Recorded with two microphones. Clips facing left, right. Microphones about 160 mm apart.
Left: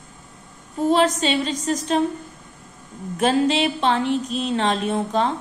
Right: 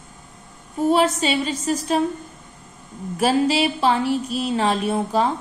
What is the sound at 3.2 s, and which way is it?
A woman's voice, 5° right (ahead or behind).